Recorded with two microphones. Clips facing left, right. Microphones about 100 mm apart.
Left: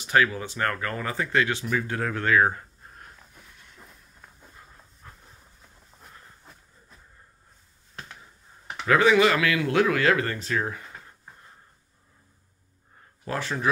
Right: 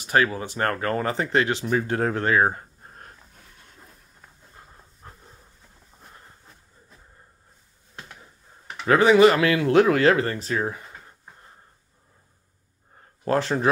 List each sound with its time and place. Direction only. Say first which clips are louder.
0.0 s speech: right 1 dB; 35° right (ahead or behind)
5.0 s train: right 3 dB; 40° right (ahead or behind)
8.8 s speech: right 4 dB; 30° right (ahead or behind)
13.2 s speech: right 7 dB; 45° right (ahead or behind)